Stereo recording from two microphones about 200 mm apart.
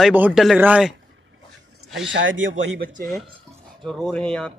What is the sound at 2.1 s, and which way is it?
Speech, 70° right (ahead or behind).